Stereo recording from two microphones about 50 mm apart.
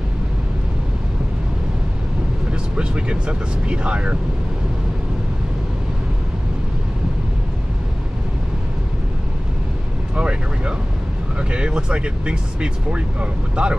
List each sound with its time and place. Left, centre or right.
2.5 s speech: right
10.1 s speech: right